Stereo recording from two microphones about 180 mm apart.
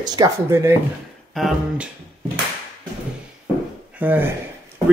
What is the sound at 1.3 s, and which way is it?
Speech, centre (ahead or behind).